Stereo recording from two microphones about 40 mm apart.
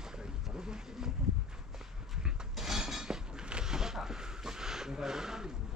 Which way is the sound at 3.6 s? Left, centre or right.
Centre.